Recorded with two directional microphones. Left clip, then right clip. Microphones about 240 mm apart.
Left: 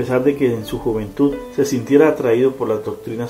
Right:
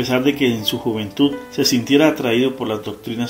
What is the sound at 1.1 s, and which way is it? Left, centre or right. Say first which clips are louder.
Speech: even; right.